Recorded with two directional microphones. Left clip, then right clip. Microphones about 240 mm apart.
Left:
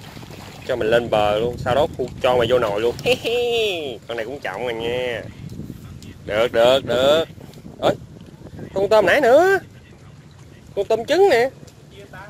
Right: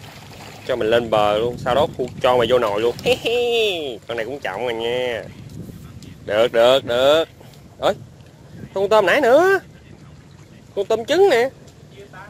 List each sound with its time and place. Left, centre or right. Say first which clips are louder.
0.7 s speech: even; centre
6.2 s speech: right 1 dB; centre
8.7 s speech: even; centre
10.7 s speech: even; centre